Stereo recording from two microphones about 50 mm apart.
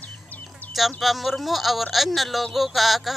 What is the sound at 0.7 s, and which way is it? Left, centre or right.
Speech, centre.